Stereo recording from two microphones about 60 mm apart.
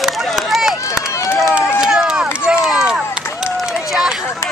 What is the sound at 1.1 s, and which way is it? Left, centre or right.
Run, left.